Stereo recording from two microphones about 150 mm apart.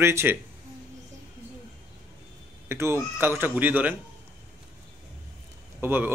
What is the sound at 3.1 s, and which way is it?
Speech, 15° right (ahead or behind).